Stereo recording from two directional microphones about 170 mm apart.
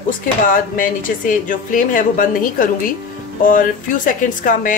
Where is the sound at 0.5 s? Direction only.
50° left (ahead or behind).